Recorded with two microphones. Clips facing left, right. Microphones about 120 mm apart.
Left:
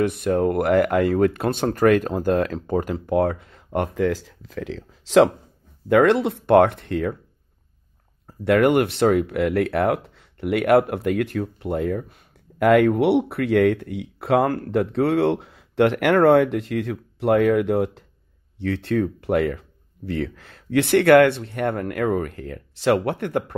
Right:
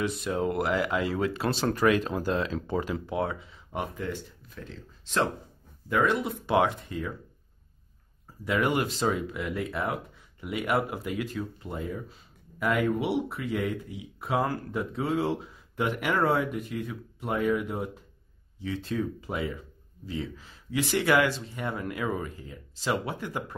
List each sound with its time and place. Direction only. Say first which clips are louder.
0.0 s speech: left 8 dB; 55° left (ahead or behind)
8.3 s speech: left 10 dB; 65° left (ahead or behind); by 18.0 s 80° left
18.6 s speech: left 9 dB; 70° left (ahead or behind)